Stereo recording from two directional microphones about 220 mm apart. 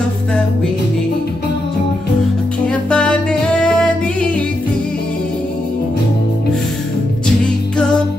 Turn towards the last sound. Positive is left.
turn(degrees=5)  # may be behind; listen again after turning